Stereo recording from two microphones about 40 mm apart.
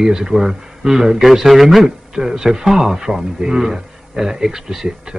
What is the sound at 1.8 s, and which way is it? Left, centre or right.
Speech, centre.